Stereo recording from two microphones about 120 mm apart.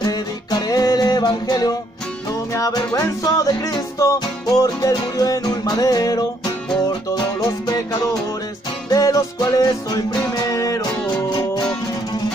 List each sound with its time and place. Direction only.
0.0 s music: 35° left (ahead or behind)